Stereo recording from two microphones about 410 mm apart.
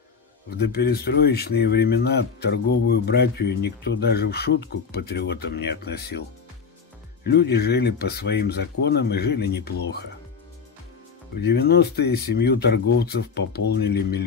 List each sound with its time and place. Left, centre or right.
0.5 s speech: left
7.2 s speech: left
11.3 s speech: left